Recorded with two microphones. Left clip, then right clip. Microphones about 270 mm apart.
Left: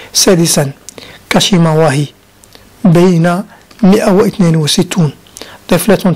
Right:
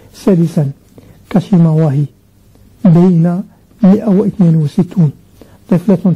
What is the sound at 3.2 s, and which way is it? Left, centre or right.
Speech, centre.